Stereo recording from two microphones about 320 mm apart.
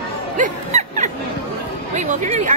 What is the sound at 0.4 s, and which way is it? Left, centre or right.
Music, right.